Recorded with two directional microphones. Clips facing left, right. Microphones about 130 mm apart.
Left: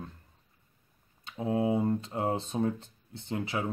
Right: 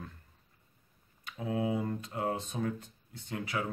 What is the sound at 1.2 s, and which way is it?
Speech, 30° left (ahead or behind).